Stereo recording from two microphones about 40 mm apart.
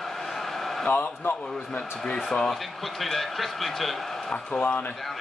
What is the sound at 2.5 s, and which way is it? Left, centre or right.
Speech, centre.